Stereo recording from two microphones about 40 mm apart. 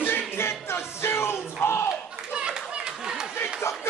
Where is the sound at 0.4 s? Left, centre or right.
Left.